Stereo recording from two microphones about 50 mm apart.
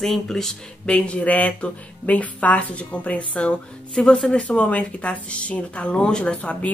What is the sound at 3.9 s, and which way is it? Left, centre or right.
Speech, centre.